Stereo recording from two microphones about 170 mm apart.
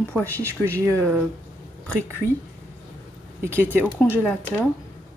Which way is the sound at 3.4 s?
10° right (ahead or behind).